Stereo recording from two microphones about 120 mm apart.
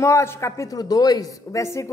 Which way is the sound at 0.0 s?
25° left (ahead or behind).